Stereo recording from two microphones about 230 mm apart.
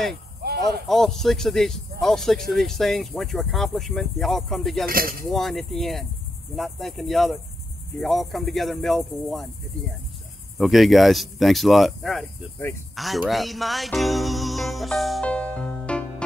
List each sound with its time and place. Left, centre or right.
0.4 s a sound: right
0.8 s speech: centre
4.8 s cutlery: right
5.3 s speech: centre
12.9 s music: centre